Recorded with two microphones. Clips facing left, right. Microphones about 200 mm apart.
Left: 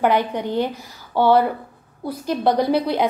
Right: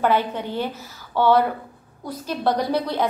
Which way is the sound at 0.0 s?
15° left (ahead or behind).